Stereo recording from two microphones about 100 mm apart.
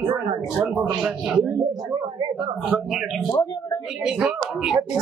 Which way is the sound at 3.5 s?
45° left (ahead or behind).